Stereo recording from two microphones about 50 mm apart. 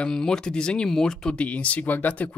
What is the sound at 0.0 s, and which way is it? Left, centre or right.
Speech, centre.